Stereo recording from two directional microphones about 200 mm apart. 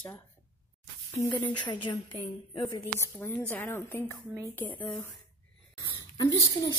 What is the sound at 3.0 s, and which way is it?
Speech, 10° left (ahead or behind).